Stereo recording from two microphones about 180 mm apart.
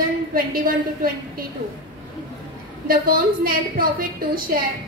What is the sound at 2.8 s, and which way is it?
A woman's voice, 55° right (ahead or behind).